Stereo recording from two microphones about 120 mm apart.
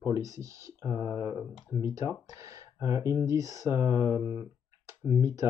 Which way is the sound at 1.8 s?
25° right (ahead or behind).